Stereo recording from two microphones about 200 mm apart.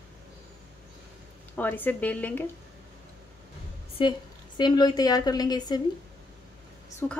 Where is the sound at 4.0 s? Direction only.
25° left (ahead or behind).